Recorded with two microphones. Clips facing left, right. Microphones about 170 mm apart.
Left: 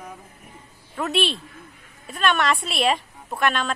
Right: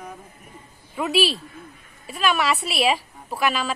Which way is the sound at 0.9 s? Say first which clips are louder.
Right 2 dB; 5° right (ahead or behind).